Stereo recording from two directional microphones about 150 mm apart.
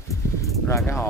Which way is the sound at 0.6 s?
15° left (ahead or behind).